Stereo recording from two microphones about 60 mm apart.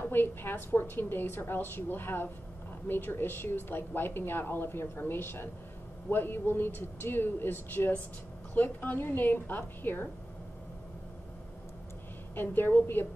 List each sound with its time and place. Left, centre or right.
0.0 s a woman's voice: left
12.4 s a woman's voice: left